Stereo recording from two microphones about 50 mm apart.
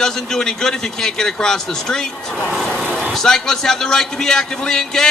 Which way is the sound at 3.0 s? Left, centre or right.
Centre.